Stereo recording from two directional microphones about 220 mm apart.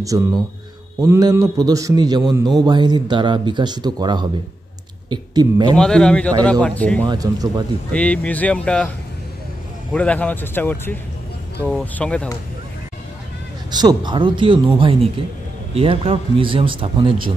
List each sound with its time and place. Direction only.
0.1 s a man's voice: 15° right (ahead or behind)
5.8 s speech: 5° left (ahead or behind)
7.1 s a man's voice: 15° right (ahead or behind)
7.9 s speech: 5° left (ahead or behind)
9.9 s speech: 5° left (ahead or behind)
13.7 s speech: 20° right (ahead or behind)